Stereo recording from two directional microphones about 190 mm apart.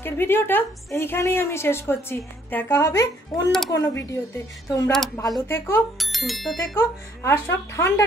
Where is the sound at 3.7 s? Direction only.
15° left (ahead or behind).